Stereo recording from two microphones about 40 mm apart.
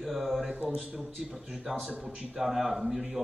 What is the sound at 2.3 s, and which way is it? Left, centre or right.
Speech, centre.